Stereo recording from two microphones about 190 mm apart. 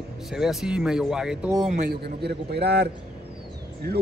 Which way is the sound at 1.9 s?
60° right (ahead or behind).